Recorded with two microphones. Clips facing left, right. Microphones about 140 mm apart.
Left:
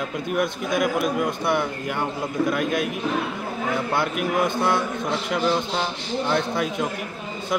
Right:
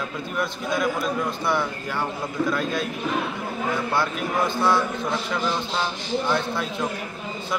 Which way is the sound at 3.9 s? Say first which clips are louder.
Left 2 dB; 20° left (ahead or behind).